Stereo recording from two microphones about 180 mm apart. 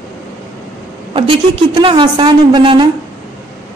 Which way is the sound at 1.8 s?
25° right (ahead or behind).